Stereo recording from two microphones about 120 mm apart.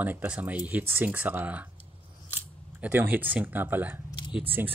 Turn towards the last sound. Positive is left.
turn(degrees=-15)  # may be behind; listen again after turning